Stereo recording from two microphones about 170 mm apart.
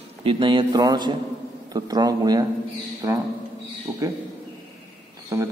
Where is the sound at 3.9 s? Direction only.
15° right (ahead or behind).